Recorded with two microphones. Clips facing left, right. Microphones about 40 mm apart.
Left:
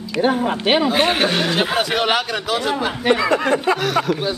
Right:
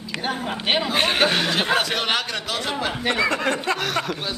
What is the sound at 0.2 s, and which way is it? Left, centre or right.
Speech, centre.